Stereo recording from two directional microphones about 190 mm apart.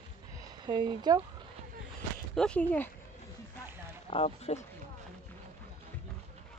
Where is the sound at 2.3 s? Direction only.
5° left (ahead or behind).